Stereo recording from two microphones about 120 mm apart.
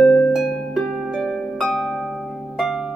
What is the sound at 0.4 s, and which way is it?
Harp, 5° right (ahead or behind).